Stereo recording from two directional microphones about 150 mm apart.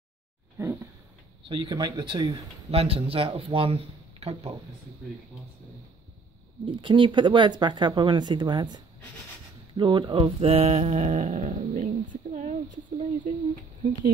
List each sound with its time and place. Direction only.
0.6 s speech: 20° right (ahead or behind)
2.7 s speech: 40° right (ahead or behind)
6.6 s speech: 30° right (ahead or behind); by 13.3 s 50° right (ahead or behind)